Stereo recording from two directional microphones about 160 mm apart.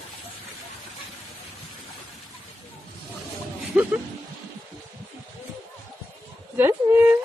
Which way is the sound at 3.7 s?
15° right (ahead or behind).